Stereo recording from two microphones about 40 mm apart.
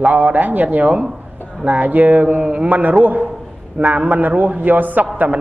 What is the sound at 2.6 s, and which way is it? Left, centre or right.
A man's voice, right.